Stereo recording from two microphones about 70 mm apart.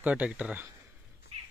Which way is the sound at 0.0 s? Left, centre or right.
Centre.